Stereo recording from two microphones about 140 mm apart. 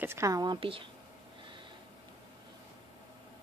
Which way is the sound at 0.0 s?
20° right (ahead or behind).